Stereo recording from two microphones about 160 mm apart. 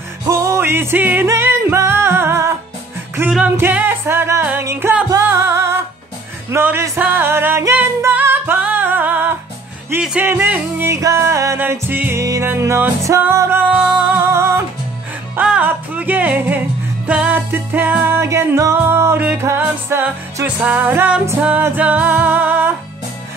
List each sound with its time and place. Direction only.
0.3 s music: 20° right (ahead or behind)